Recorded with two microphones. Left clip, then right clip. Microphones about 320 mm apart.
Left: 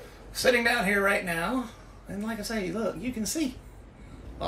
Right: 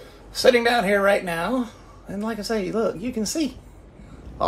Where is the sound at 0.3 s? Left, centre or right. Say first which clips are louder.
Right 6 dB; centre.